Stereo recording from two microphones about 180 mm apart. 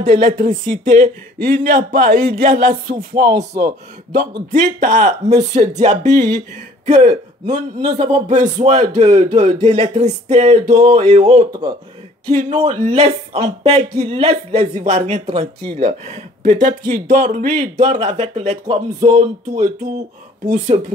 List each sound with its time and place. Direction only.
0.0 s speech: 45° right (ahead or behind)